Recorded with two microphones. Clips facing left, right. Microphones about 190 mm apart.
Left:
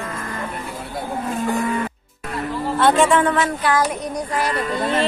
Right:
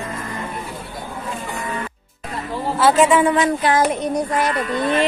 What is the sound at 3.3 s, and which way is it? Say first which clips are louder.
Child singing: right 2 dB; 20° right (ahead or behind).